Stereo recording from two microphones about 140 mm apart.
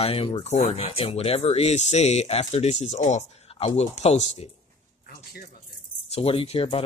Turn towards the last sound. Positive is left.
turn(degrees=45)  # may be behind; listen again after turning